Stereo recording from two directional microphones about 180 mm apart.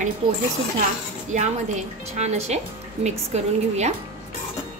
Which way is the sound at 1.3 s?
40° right (ahead or behind).